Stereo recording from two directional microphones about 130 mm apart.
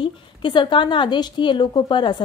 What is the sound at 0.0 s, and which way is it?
A woman's voice, 40° left (ahead or behind).